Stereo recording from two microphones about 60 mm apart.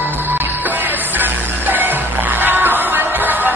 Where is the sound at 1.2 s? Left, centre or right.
Right.